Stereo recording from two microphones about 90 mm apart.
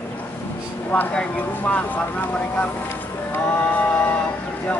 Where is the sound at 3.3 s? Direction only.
20° left (ahead or behind).